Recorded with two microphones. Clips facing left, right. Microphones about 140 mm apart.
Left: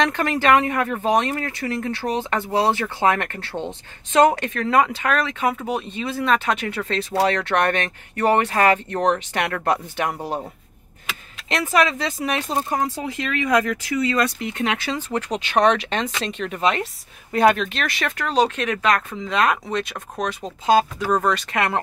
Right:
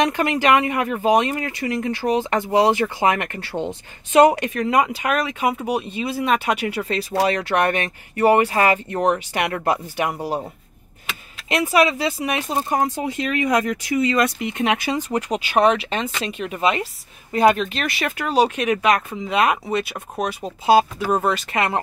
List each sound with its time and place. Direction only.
0.0 s speech: 10° right (ahead or behind)
11.4 s speech: 10° right (ahead or behind)